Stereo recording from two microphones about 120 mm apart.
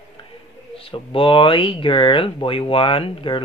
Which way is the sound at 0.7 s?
45° left (ahead or behind).